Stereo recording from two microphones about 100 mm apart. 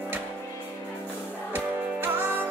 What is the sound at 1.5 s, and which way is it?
Music, 20° right (ahead or behind).